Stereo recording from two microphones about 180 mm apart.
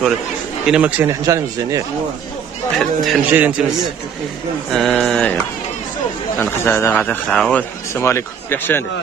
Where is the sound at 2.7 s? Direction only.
Centre (ahead or behind).